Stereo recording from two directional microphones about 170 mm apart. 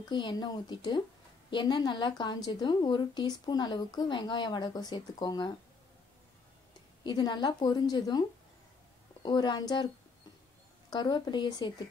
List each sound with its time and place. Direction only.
0.1 s a woman's voice: 25° left (ahead or behind)
7.0 s a woman's voice: 25° left (ahead or behind)
10.9 s a woman's voice: 25° left (ahead or behind)